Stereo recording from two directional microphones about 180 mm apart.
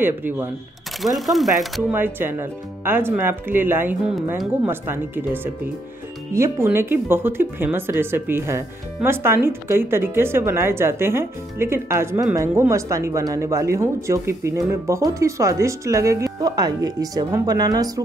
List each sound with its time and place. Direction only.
0.0 s speech: 10° right (ahead or behind)
1.0 s ratchet: centre (ahead or behind)
2.0 s speech: 10° right (ahead or behind)